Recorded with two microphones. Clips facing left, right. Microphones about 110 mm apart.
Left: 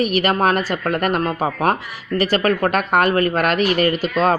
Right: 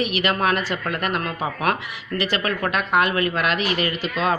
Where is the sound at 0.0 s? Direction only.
45° left (ahead or behind).